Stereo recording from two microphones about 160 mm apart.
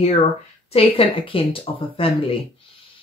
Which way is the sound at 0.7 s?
35° left (ahead or behind).